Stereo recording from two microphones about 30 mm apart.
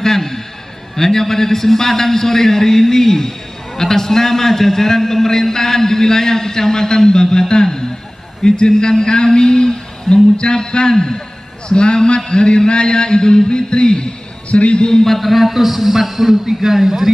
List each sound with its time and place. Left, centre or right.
0.0 s a sound: centre
0.9 s a man's voice: centre; by 14.1 s left
14.5 s a man's voice: left
15.0 s a man's voice: centre